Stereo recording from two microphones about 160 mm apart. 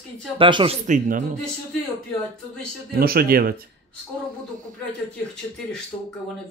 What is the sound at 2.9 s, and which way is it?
Speech, 70° right (ahead or behind).